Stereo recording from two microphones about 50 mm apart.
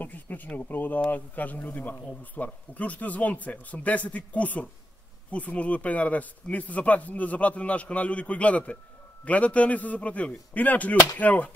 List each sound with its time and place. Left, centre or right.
0.0 s speech: left